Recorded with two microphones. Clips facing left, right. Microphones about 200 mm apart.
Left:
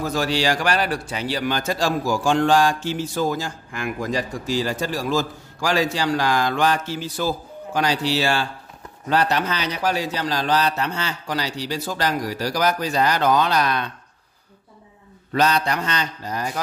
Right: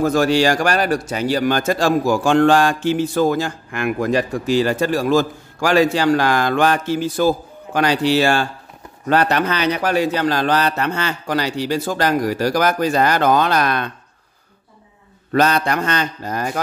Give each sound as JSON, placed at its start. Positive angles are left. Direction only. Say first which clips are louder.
{"t": 0.0, "sound": "speech", "louder": "right 7 dB", "side_deg": -50}
{"t": 15.3, "sound": "mantra", "louder": "right 4 dB", "side_deg": -50}